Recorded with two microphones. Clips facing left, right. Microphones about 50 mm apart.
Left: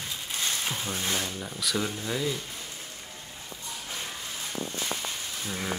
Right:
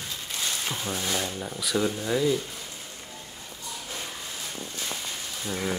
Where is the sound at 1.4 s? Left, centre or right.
Centre.